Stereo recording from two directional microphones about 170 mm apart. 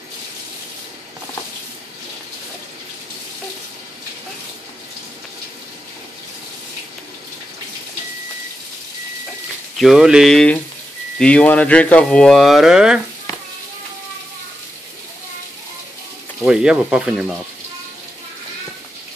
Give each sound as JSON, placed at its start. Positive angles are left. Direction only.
{"t": 9.8, "sound": "speech", "side_deg": 0}
{"t": 16.4, "sound": "speech", "side_deg": -5}